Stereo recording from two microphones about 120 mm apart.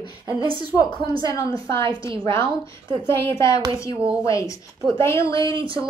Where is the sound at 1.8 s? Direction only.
45° right (ahead or behind).